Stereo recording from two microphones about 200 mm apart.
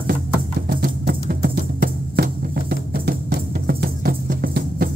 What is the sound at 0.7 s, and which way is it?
Music, 50° right (ahead or behind).